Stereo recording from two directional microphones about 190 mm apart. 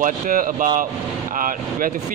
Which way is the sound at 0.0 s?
45° right (ahead or behind).